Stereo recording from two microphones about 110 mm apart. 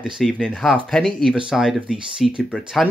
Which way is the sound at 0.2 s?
10° left (ahead or behind).